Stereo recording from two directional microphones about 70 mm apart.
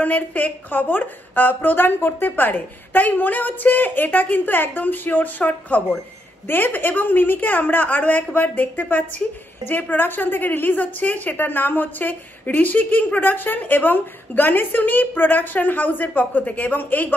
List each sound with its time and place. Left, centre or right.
0.0 s speech: left